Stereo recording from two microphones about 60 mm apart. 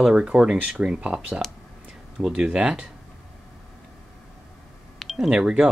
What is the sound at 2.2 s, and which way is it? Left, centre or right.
Speech, centre.